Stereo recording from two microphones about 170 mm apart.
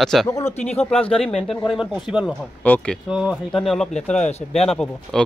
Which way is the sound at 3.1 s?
5° right (ahead or behind).